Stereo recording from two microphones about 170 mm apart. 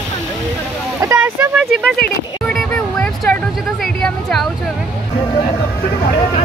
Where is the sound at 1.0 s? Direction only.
15° right (ahead or behind).